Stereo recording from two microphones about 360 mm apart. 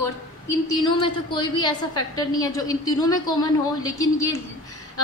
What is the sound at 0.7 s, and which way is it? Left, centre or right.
A woman's voice, centre.